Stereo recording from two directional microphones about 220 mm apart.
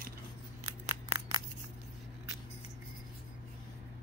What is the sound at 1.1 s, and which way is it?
Scissors, 20° right (ahead or behind).